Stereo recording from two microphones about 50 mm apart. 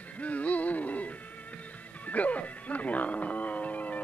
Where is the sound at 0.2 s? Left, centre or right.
Left.